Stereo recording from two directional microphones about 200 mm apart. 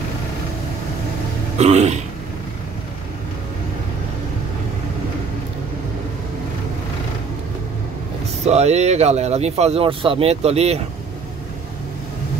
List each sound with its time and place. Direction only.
1.6 s speech: 35° right (ahead or behind)
8.5 s speech: 35° right (ahead or behind)